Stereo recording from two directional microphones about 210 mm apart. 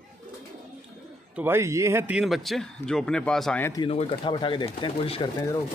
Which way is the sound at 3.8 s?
25° left (ahead or behind).